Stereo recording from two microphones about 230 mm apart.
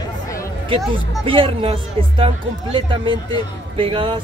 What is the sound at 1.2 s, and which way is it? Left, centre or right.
Speech, right.